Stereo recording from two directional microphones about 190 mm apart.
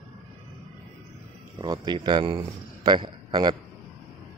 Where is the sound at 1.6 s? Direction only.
20° right (ahead or behind).